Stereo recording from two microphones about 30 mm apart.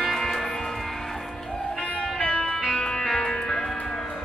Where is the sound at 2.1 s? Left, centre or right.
Left.